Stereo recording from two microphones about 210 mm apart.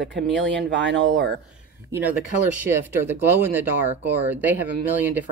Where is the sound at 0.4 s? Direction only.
60° right (ahead or behind).